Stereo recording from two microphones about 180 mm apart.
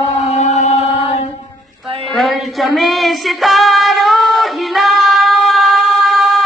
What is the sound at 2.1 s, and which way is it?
Music, centre (ahead or behind).